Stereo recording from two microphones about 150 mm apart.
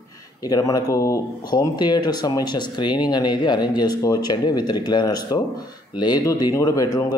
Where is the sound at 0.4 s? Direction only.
25° left (ahead or behind).